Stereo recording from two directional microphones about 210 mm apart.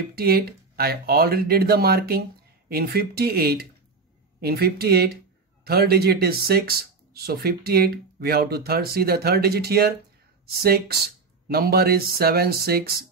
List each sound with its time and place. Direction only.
0.1 s speech: 45° right (ahead or behind)